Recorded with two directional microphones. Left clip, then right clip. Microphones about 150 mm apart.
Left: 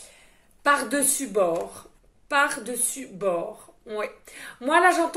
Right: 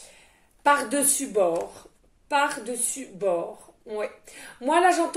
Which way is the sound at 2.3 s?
30° left (ahead or behind).